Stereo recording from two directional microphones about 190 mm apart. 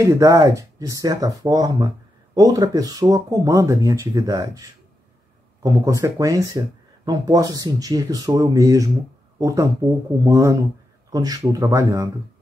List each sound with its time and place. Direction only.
0.0 s speech: 15° right (ahead or behind)